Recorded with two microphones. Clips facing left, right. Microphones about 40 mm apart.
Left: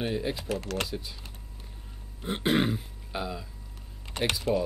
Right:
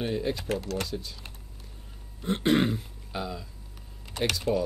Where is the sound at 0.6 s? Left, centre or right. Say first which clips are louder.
Even; left.